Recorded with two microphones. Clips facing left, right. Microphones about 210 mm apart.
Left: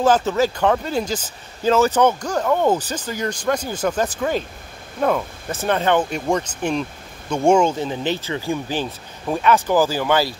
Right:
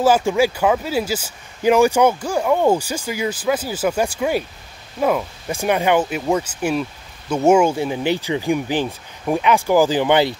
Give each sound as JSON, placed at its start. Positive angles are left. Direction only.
{"t": 0.0, "sound": "speech", "side_deg": -10}